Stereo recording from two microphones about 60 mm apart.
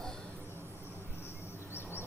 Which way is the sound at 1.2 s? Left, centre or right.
Left.